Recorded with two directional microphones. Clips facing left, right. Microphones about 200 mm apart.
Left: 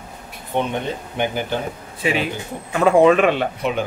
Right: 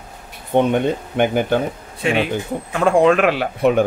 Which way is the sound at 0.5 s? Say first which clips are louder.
Right 7 dB; 50° right (ahead or behind).